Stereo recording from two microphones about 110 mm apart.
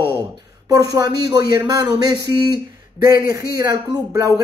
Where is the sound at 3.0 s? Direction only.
35° right (ahead or behind).